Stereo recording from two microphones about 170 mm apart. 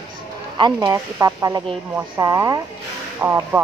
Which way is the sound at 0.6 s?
25° right (ahead or behind).